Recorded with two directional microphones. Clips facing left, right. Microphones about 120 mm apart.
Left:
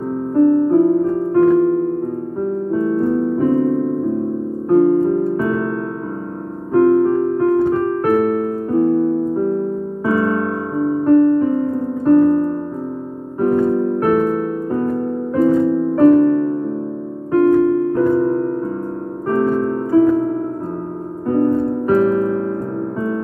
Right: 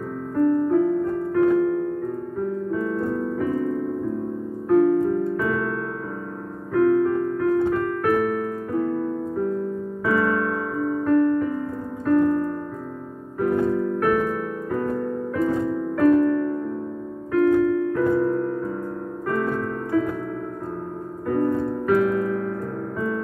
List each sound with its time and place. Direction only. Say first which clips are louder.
0.3 s music: left 6 dB; 30° left (ahead or behind)
2.4 s piano: left 7 dB; 30° left (ahead or behind)
4.6 s music: left 5 dB; 30° left (ahead or behind)
6.7 s keyboard: left 6 dB; 30° left (ahead or behind)
10.0 s piano: left 4 dB; 30° left (ahead or behind)
13.4 s music: left 6 dB; 35° left (ahead or behind)
17.3 s keyboard: left 5 dB; 35° left (ahead or behind)
19.2 s music: left 8 dB; 30° left (ahead or behind)